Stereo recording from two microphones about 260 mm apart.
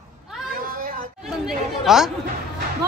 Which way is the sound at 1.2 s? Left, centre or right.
Centre.